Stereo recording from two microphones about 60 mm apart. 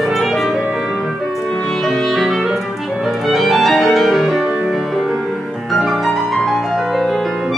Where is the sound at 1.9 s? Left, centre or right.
Centre.